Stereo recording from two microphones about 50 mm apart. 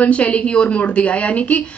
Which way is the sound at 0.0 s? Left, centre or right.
Left.